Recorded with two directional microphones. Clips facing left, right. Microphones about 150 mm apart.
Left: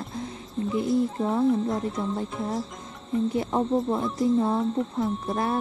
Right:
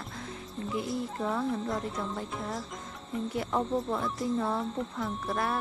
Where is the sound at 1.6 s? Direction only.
Centre (ahead or behind).